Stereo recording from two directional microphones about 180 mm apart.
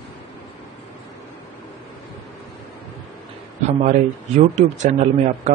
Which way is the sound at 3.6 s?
40° right (ahead or behind).